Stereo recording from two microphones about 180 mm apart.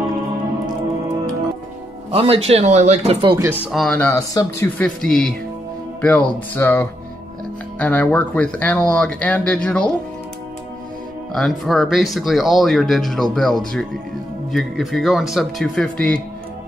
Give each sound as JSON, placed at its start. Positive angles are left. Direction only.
{"t": 2.0, "sound": "speech", "side_deg": -35}
{"t": 3.7, "sound": "speech", "side_deg": 5}
{"t": 4.3, "sound": "speech", "side_deg": 20}
{"t": 4.7, "sound": "speech", "side_deg": 5}
{"t": 11.3, "sound": "speech", "side_deg": 0}